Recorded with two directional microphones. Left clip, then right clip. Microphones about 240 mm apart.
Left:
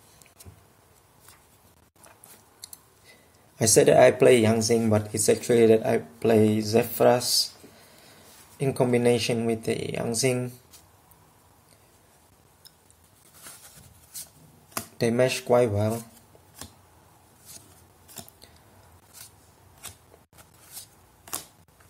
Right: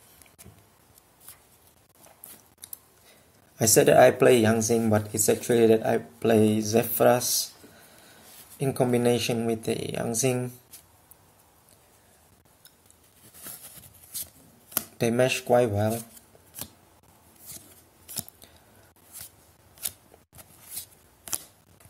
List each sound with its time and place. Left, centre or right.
2.6 s speech: centre
14.8 s speech: centre
20.7 s a sound: centre